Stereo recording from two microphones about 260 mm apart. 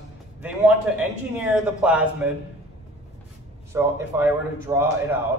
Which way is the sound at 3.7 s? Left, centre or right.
Centre.